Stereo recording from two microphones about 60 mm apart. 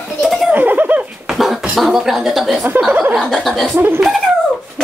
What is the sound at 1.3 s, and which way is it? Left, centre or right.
Beatboxing, centre.